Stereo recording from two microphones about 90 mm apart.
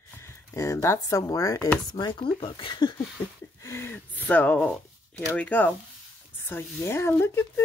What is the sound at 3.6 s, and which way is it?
Speech, 30° left (ahead or behind).